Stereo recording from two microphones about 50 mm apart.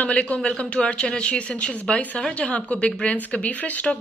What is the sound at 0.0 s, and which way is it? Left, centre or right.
Speech, left.